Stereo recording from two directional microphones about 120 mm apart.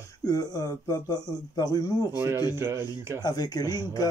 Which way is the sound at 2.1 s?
20° right (ahead or behind).